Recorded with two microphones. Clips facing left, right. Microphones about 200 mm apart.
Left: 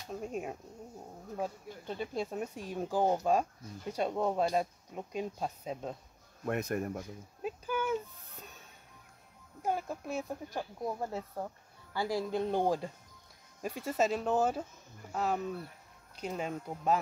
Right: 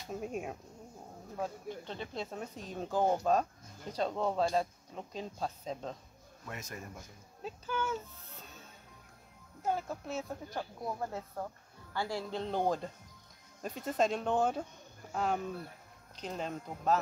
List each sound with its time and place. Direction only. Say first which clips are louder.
0.1 s speech: even; centre (ahead or behind)
1.9 s speech: left 8 dB; 10° left (ahead or behind)
6.4 s speech: left 12 dB; 60° left (ahead or behind)
7.4 s a sound: left 3 dB; 10° left (ahead or behind)
9.6 s speech: left 1 dB; 15° left (ahead or behind)